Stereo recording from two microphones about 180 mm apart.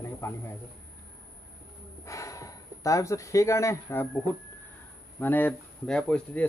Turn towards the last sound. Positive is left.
turn(degrees=5)  # may be behind; listen again after turning